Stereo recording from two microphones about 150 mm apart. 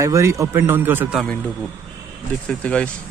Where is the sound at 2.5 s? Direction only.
10° left (ahead or behind).